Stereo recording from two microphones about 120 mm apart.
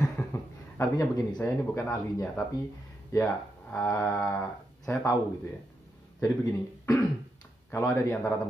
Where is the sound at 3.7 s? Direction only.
25° left (ahead or behind).